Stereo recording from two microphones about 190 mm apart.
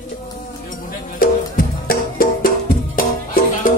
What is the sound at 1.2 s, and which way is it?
Music, 50° left (ahead or behind).